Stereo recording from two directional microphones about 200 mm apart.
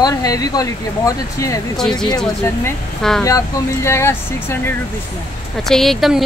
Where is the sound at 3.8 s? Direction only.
15° left (ahead or behind).